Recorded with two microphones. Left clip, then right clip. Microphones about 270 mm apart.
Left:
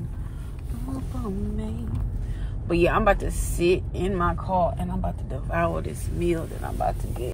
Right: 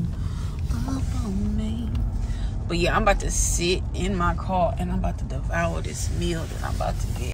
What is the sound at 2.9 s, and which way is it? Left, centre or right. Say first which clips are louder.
Speech: even; left.